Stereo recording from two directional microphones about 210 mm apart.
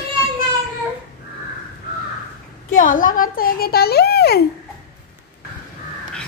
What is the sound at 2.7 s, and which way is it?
A child's voice, 40° left (ahead or behind).